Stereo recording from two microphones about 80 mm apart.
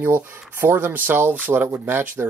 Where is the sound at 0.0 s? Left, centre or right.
Right.